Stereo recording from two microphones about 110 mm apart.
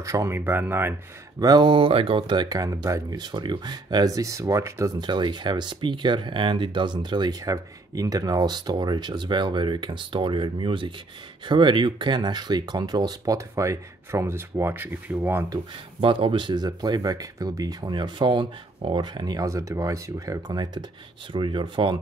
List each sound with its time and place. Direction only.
0.0 s speech: 30° right (ahead or behind)
1.4 s speech: 40° right (ahead or behind)
4.9 s speech: 40° right (ahead or behind); by 15.4 s 20° right (ahead or behind)
16.0 s speech: 55° right (ahead or behind)